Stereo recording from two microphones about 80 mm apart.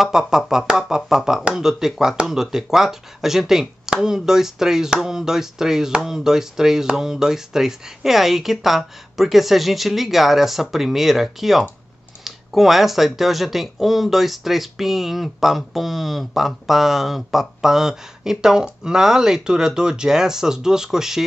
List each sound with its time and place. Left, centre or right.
0.0 s speech: centre